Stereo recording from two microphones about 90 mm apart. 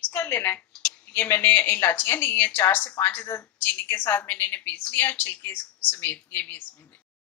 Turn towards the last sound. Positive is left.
turn(degrees=20)  # may be behind; listen again after turning